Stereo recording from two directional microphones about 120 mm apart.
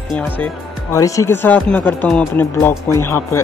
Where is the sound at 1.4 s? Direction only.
15° left (ahead or behind).